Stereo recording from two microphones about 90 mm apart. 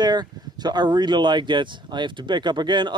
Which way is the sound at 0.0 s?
50° right (ahead or behind).